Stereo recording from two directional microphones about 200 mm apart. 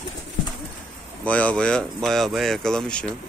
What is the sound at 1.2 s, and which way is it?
Speech, 5° left (ahead or behind).